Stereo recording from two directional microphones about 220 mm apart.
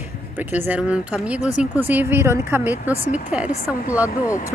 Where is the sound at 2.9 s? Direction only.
35° left (ahead or behind).